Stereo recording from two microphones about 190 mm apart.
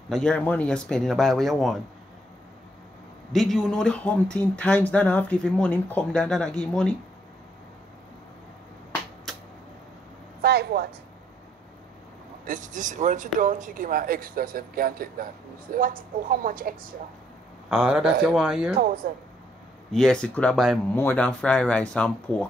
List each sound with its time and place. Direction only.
0.1 s speech: 5° left (ahead or behind)
3.3 s speech: centre (ahead or behind)
9.3 s a sound: centre (ahead or behind)
10.4 s a woman's voice: 60° right (ahead or behind)
12.4 s speech: 40° right (ahead or behind)
17.6 s speech: 5° right (ahead or behind)
19.0 s speech: 50° right (ahead or behind)
19.9 s speech: 5° left (ahead or behind)
20.9 s speech: 10° left (ahead or behind)